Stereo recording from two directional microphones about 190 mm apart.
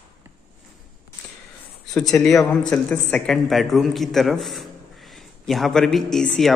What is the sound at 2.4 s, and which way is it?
Speech, 20° left (ahead or behind).